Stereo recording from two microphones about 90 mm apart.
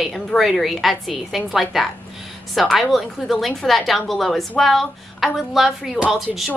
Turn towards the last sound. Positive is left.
turn(degrees=0)  # may be behind; listen again after turning